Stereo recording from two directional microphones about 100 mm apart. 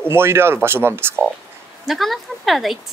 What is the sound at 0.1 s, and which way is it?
Speech, 25° right (ahead or behind).